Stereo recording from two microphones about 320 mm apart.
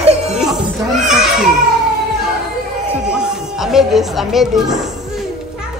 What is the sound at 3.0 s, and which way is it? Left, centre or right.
Speech, centre.